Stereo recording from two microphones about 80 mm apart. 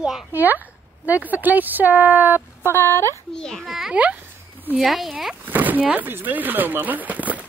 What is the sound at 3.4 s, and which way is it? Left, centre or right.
Speech, centre.